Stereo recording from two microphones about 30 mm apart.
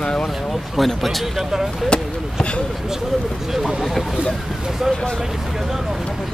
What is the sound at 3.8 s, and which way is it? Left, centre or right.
Speech, centre.